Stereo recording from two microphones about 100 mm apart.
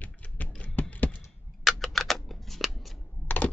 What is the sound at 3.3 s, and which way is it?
Computer keyboard, 15° left (ahead or behind).